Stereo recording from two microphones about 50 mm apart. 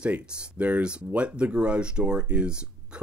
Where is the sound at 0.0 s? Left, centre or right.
Right.